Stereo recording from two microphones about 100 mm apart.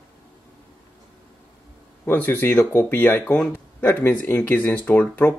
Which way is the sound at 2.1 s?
20° left (ahead or behind).